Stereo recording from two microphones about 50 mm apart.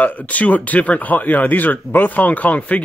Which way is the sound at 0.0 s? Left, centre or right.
Left.